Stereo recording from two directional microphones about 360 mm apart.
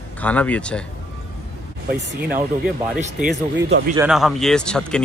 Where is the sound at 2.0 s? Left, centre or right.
Right.